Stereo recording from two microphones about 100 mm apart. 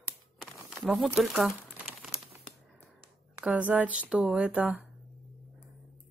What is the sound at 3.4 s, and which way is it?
Speech, 10° right (ahead or behind).